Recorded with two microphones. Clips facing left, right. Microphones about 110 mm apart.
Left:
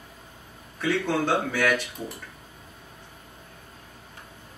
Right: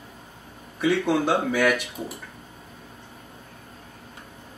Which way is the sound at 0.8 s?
15° right (ahead or behind).